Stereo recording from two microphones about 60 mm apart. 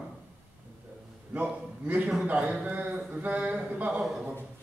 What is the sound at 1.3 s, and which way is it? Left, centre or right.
A man's voice, right.